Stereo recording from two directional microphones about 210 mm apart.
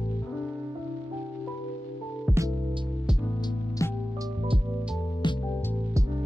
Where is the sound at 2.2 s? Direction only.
15° right (ahead or behind).